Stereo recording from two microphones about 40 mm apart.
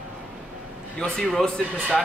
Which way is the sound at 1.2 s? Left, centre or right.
Centre.